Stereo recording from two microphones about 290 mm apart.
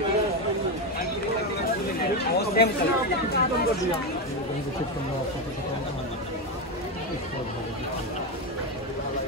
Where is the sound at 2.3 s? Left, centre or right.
Left.